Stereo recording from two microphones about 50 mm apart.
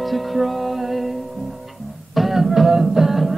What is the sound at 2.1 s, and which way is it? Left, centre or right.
Music, centre.